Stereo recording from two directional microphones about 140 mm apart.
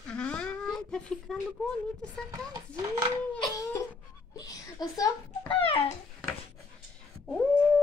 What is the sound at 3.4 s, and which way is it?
Cough, 25° left (ahead or behind).